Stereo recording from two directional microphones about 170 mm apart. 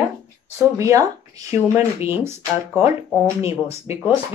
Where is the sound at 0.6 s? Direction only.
20° right (ahead or behind).